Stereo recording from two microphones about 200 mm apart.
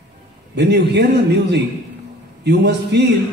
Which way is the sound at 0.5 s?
55° right (ahead or behind).